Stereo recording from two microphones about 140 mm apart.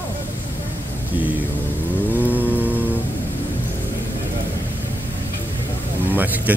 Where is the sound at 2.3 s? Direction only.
10° right (ahead or behind).